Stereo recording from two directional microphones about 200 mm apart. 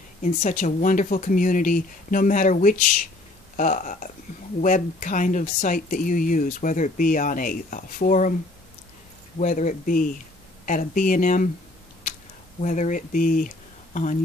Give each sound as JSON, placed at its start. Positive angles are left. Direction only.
{"t": 0.2, "sound": "speech", "side_deg": 40}
{"t": 9.4, "sound": "speech", "side_deg": 40}
{"t": 12.6, "sound": "speech", "side_deg": 40}